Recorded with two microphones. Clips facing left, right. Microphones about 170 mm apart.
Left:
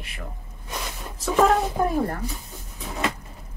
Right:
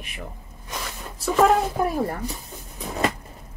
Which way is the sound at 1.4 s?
10° right (ahead or behind).